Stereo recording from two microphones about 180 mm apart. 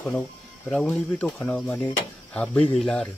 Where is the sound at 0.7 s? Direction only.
5° left (ahead or behind).